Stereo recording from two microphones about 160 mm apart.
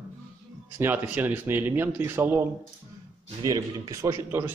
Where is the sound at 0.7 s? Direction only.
15° right (ahead or behind).